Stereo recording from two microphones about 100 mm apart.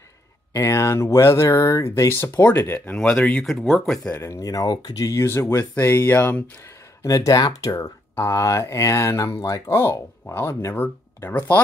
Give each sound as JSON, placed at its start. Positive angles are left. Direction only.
{"t": 0.5, "sound": "speech", "side_deg": 30}
{"t": 4.2, "sound": "speech", "side_deg": 30}
{"t": 5.2, "sound": "speech", "side_deg": 25}
{"t": 7.0, "sound": "speech", "side_deg": 35}